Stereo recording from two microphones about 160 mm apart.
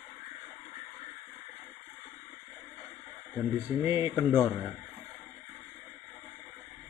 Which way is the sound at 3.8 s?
15° right (ahead or behind).